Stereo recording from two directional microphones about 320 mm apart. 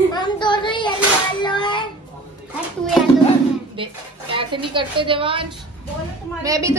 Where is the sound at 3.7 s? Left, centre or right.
Centre.